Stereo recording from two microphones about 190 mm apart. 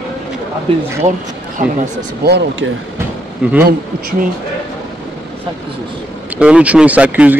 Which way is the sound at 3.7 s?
50° right (ahead or behind).